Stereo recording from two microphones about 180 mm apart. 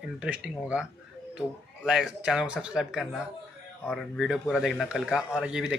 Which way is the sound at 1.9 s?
5° right (ahead or behind).